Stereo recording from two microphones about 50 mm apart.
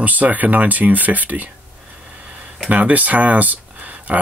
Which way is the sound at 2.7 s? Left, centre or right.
Right.